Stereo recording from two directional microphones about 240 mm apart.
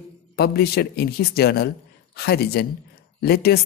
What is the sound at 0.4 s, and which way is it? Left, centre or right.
Speech, left.